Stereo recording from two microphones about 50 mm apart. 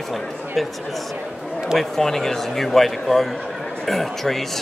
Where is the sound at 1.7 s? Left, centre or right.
Centre.